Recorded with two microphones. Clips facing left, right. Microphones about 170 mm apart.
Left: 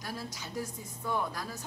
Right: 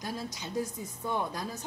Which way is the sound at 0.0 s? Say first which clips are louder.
Right 3 dB; 20° right (ahead or behind).